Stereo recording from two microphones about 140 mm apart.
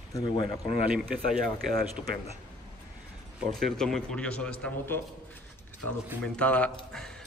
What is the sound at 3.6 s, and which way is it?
A man's voice, 5° left (ahead or behind).